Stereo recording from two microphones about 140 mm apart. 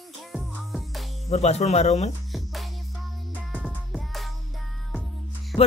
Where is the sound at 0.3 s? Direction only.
Centre (ahead or behind).